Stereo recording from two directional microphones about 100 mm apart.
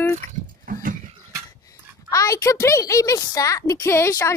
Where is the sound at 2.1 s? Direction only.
35° left (ahead or behind).